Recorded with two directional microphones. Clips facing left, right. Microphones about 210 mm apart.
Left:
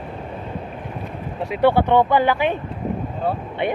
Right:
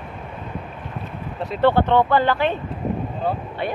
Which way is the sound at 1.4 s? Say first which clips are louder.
Left 1 dB; 10° left (ahead or behind).